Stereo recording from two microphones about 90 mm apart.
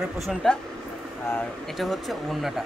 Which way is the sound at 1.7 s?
Centre (ahead or behind).